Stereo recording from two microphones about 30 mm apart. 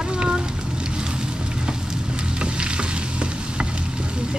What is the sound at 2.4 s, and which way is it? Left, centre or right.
Stir, right.